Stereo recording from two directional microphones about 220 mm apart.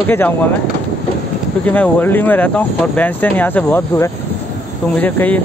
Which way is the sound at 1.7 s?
10° left (ahead or behind).